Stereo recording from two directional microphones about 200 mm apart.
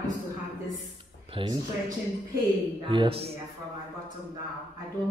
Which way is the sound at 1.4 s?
25° right (ahead or behind).